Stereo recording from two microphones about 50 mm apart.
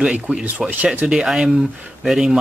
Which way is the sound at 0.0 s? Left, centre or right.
Centre.